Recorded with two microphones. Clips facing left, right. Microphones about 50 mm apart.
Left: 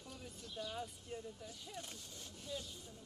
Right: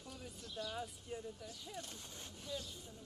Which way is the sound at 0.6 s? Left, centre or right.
Centre.